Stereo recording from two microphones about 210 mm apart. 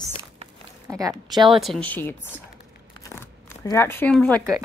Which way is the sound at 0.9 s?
15° right (ahead or behind).